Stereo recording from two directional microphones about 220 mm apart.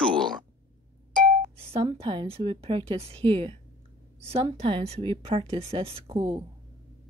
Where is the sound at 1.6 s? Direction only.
25° right (ahead or behind).